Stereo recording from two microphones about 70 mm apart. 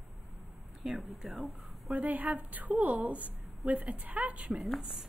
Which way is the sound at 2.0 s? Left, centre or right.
Right.